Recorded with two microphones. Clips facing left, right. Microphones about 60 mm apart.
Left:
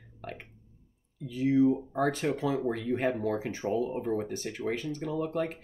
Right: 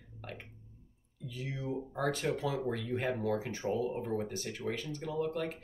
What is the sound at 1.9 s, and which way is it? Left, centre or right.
Speech, left.